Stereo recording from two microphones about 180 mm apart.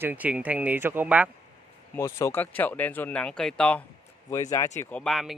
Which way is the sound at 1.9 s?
15° left (ahead or behind).